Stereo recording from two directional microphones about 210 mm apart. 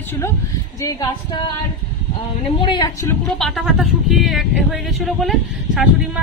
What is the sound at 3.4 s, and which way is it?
Speech, centre (ahead or behind).